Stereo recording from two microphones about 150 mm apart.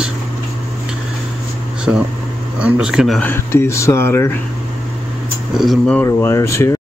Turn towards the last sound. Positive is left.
turn(degrees=20)  # may be behind; listen again after turning